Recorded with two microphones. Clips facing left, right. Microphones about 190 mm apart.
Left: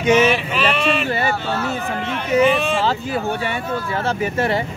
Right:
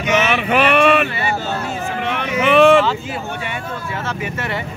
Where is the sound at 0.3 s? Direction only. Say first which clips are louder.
Right 4 dB; 60° right (ahead or behind).